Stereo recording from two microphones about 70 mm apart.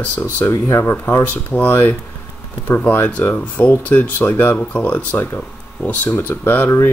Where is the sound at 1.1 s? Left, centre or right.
Left.